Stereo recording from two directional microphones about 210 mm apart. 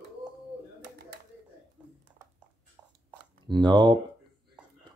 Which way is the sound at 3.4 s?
20° right (ahead or behind).